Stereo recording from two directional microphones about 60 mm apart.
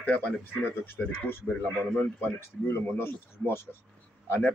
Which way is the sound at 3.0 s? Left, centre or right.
Left.